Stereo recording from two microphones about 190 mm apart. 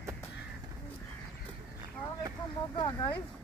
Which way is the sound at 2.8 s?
25° left (ahead or behind).